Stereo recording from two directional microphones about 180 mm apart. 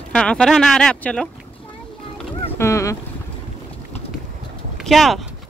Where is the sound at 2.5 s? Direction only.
15° left (ahead or behind).